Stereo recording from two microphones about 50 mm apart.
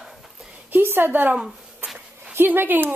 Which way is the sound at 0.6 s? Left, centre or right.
Right.